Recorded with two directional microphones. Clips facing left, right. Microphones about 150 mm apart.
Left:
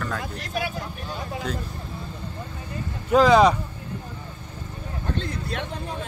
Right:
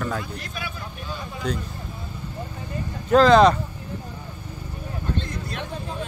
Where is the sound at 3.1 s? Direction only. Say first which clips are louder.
Right 2 dB; 10° left (ahead or behind).